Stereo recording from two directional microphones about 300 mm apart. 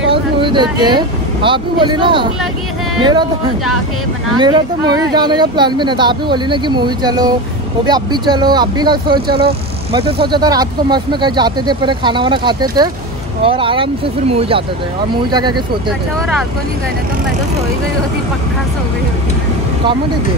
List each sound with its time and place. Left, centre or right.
0.1 s speech: centre
4.4 s speech: centre
9.3 s speech: right
10.2 s speech: centre